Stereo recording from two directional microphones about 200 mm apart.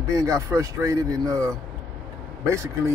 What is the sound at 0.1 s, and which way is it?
Speech, 15° right (ahead or behind).